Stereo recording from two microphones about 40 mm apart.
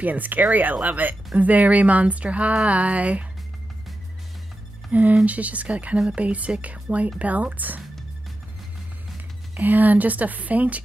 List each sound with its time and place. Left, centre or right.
0.0 s speech: right
5.2 s speech: right
9.6 s speech: right